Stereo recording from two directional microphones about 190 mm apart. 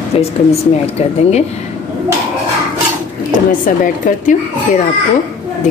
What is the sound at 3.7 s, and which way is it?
Speech, 45° left (ahead or behind).